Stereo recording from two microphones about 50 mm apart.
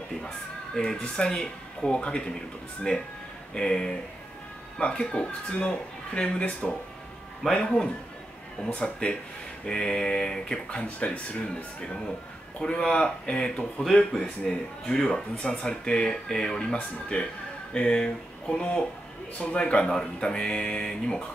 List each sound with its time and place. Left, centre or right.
0.7 s speech: centre
7.4 s speech: centre
8.7 s speech: left
9.7 s speech: centre
10.7 s speech: left; by 14.6 s centre
14.9 s speech: centre